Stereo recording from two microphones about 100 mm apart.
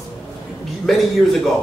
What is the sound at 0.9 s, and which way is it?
Speech, centre (ahead or behind).